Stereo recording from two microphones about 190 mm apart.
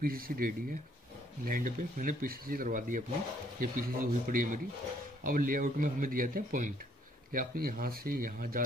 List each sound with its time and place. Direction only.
0.0 s speech: 50° right (ahead or behind)